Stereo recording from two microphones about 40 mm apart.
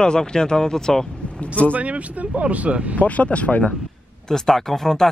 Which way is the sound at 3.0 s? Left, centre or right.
Left.